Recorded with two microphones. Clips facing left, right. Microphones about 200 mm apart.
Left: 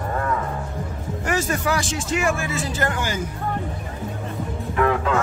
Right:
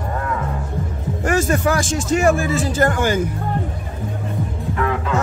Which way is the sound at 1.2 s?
50° right (ahead or behind).